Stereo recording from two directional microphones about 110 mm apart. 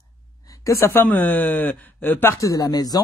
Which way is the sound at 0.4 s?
30° left (ahead or behind).